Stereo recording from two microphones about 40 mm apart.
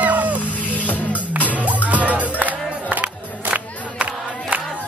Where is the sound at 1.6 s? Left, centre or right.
Right.